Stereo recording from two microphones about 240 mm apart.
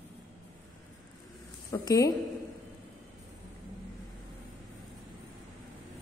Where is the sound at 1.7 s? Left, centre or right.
Centre.